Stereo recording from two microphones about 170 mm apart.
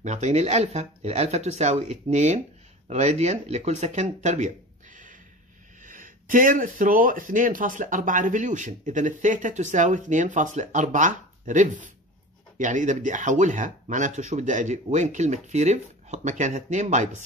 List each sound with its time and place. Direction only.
0.0 s speech: 45° right (ahead or behind)